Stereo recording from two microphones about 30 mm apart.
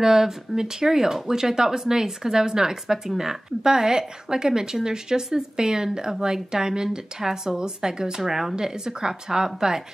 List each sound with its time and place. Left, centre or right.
0.0 s speech: centre
8.2 s speech: centre